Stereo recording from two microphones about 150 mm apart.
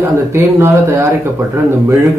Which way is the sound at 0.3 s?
15° right (ahead or behind).